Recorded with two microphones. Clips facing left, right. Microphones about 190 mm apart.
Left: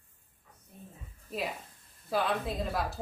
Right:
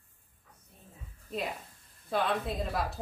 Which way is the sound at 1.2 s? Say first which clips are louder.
Even; 5° left (ahead or behind).